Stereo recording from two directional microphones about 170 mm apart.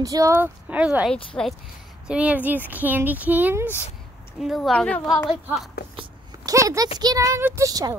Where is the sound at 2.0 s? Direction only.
5° right (ahead or behind).